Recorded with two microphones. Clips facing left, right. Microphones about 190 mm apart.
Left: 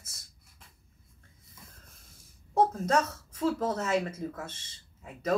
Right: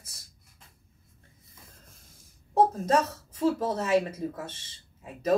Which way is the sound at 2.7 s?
25° right (ahead or behind).